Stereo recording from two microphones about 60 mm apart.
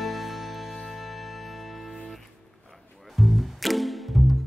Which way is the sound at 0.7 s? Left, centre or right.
Centre.